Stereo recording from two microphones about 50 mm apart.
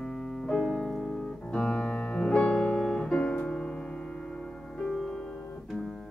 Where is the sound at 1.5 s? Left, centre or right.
Left.